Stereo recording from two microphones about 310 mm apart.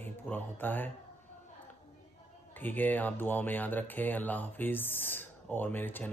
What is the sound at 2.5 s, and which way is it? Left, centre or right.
Speech, centre.